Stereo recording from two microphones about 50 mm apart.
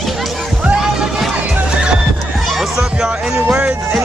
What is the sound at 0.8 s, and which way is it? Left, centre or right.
Music, centre.